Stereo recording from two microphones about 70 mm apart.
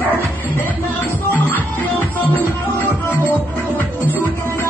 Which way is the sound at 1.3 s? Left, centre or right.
Left.